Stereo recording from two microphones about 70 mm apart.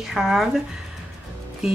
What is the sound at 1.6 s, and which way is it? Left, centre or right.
Music, centre.